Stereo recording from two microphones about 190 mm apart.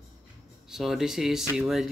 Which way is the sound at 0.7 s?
Centre (ahead or behind).